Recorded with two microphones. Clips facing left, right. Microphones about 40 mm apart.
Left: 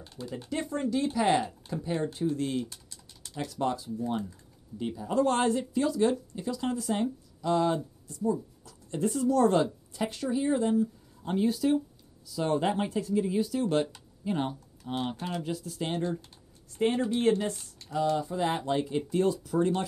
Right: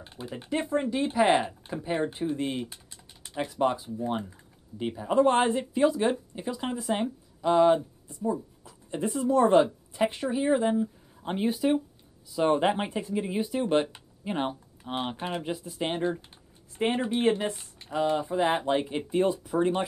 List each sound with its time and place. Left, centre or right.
0.0 s speech: right